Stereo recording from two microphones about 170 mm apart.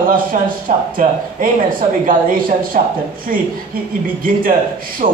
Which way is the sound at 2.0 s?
55° right (ahead or behind).